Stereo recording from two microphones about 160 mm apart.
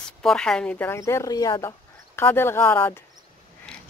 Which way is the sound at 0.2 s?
5° left (ahead or behind).